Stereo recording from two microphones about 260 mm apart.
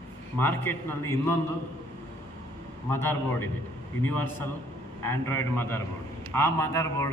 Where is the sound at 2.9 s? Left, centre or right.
Centre.